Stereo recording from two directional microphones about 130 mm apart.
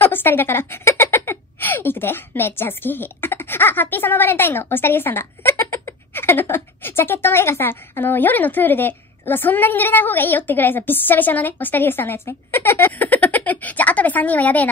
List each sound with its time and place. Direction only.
0.0 s a woman's voice: 15° left (ahead or behind)